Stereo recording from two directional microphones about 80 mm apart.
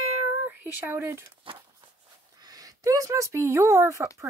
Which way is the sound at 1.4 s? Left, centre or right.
Right.